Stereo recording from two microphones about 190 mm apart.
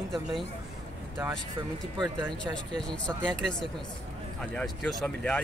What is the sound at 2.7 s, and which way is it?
Speech, 5° left (ahead or behind).